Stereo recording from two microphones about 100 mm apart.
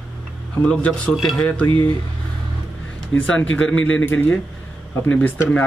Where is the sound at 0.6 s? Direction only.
15° left (ahead or behind).